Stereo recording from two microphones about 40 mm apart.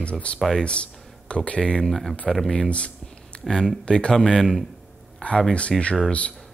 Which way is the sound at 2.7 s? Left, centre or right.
Left.